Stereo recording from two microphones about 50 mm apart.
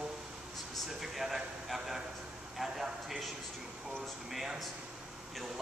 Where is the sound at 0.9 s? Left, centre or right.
Centre.